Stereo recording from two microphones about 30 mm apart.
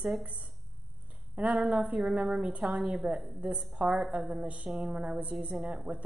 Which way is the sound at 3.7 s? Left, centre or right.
Right.